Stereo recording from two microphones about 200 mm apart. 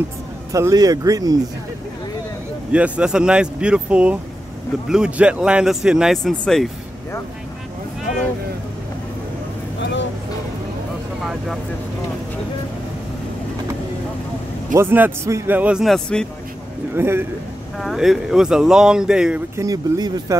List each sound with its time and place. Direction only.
0.5 s speech: 15° right (ahead or behind)
2.7 s speech: 5° right (ahead or behind)
11.2 s speech: centre (ahead or behind)
14.7 s speech: 10° right (ahead or behind)
16.9 s speech: 10° right (ahead or behind)
17.7 s speech: centre (ahead or behind); by 20.3 s 15° right (ahead or behind)